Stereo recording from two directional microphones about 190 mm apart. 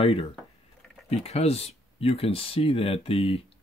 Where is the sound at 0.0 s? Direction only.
30° left (ahead or behind).